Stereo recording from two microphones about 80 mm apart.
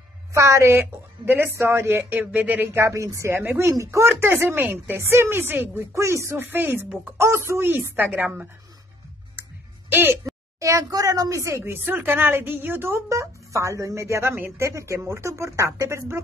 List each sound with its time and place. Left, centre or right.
0.3 s a woman's voice: right
2.9 s a woman's voice: right
5.9 s a woman's voice: right
9.8 s music: right
10.6 s a woman's voice: right